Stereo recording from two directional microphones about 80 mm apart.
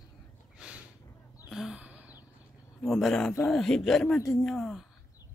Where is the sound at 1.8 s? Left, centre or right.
Centre.